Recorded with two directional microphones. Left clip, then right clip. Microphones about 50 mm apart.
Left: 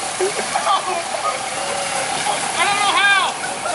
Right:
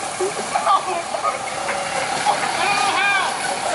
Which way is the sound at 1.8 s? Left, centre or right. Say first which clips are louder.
Left 1 dB; centre.